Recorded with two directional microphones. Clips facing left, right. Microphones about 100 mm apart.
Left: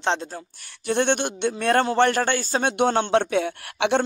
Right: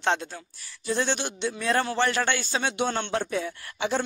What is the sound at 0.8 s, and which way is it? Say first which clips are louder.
Speech: left 5 dB; 60° left (ahead or behind).